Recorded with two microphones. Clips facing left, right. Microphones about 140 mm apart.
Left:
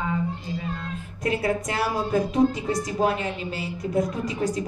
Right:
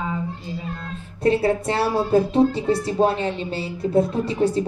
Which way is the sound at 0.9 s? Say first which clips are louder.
Right 9 dB; 30° right (ahead or behind).